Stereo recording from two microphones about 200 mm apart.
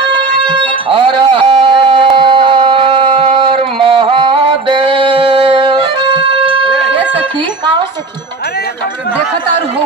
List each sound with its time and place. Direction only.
0.5 s music: 25° right (ahead or behind)